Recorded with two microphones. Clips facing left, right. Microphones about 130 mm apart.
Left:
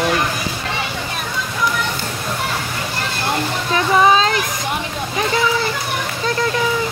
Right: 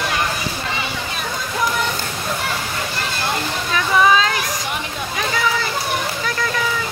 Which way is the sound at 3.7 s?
30° left (ahead or behind).